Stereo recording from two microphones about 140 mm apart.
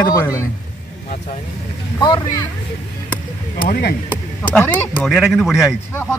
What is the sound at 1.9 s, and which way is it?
Speech, 30° left (ahead or behind).